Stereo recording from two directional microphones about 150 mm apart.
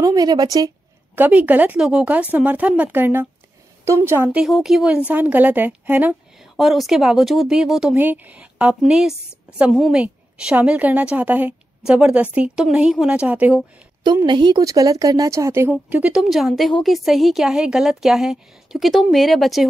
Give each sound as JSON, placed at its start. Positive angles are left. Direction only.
{"t": 0.0, "sound": "a woman's voice", "side_deg": -25}
{"t": 1.1, "sound": "a woman's voice", "side_deg": -10}
{"t": 4.4, "sound": "a woman's voice", "side_deg": 0}
{"t": 14.2, "sound": "a woman's voice", "side_deg": -30}